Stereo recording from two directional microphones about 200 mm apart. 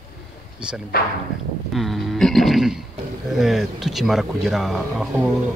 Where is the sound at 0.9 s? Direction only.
50° left (ahead or behind).